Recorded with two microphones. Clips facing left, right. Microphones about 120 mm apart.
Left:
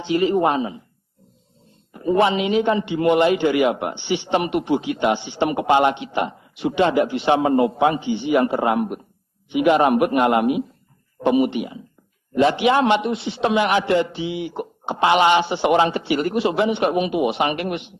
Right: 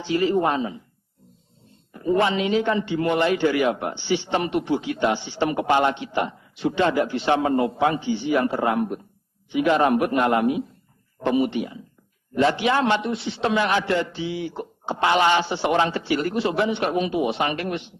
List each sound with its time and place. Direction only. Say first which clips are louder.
0.0 s speech: left 3 dB; 20° left (ahead or behind)
2.0 s a man's voice: left 3 dB; 20° left (ahead or behind)